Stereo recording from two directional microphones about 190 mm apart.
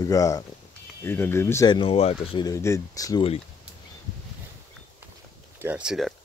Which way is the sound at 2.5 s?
15° left (ahead or behind).